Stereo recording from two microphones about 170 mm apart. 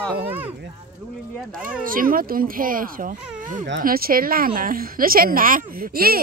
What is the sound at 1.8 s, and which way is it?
A woman's voice, 55° right (ahead or behind).